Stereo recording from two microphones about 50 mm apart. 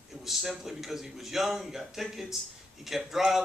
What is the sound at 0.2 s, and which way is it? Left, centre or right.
A man's voice, centre.